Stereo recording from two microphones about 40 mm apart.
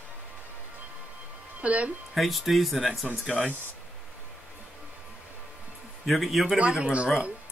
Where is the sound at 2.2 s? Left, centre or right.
Centre.